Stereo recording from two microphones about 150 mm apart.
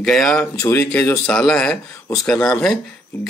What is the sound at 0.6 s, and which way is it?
Speech, 15° left (ahead or behind).